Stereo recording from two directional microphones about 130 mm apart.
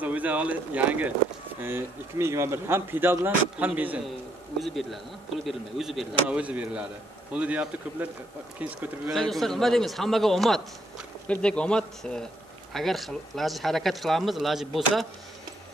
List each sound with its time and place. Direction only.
0.0 s speech: 10° right (ahead or behind)
4.6 s speech: centre (ahead or behind)
9.1 s speech: centre (ahead or behind)